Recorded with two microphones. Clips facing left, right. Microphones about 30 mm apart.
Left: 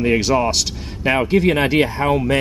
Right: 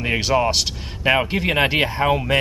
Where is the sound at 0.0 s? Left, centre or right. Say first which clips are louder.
Left 3 dB; centre.